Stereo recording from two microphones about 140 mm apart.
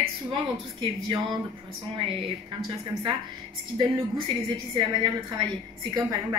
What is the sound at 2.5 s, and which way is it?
A woman's voice, 30° right (ahead or behind).